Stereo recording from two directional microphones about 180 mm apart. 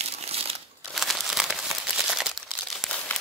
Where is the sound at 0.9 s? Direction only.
Centre (ahead or behind).